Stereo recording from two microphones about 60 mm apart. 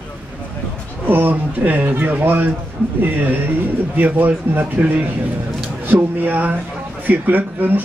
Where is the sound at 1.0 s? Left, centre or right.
Right.